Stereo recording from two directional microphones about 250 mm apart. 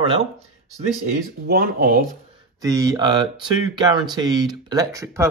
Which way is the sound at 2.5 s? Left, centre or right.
Centre.